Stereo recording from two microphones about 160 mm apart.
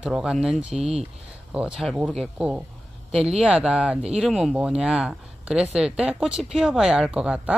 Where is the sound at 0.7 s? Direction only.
40° right (ahead or behind).